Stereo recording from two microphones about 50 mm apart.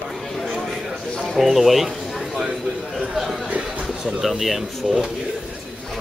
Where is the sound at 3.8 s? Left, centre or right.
Centre.